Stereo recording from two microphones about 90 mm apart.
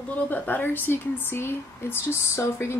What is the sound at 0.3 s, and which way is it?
A woman's voice, 20° left (ahead or behind).